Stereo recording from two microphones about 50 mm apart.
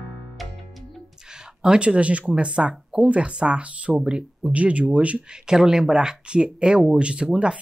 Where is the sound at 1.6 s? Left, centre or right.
Centre.